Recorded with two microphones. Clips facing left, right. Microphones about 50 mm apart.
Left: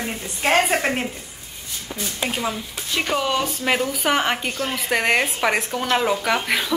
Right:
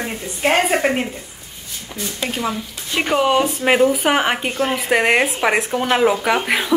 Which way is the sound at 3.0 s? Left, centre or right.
Right.